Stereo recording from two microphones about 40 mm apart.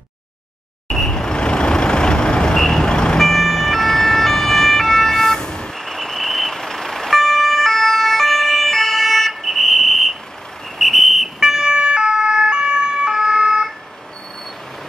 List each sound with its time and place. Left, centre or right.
0.8 s vehicle: centre
3.2 s ambulance: centre
9.3 s vehicle: centre
10.8 s whistle: centre
11.3 s emergency vehicle: centre